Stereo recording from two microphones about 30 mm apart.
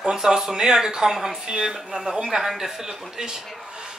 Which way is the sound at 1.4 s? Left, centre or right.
Right.